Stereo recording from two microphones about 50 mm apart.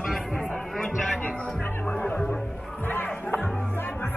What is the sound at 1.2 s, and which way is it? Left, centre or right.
Music, left.